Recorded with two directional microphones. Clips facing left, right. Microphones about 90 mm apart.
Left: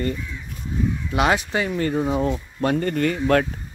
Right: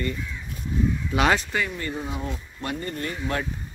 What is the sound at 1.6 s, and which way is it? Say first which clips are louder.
Speech: left 7 dB; 50° left (ahead or behind).